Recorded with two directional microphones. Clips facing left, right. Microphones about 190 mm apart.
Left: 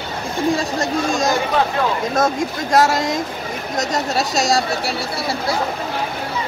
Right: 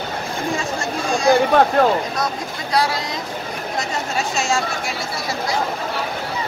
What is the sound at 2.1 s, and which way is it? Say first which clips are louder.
Speech: left 6 dB; 45° left (ahead or behind).